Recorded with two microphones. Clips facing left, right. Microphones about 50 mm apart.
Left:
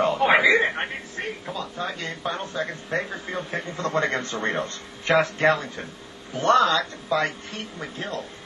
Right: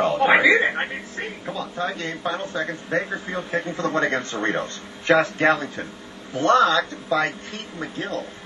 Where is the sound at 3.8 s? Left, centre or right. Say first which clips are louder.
Right 1 dB; right.